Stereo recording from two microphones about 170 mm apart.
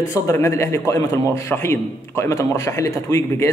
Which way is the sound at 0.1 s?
15° left (ahead or behind).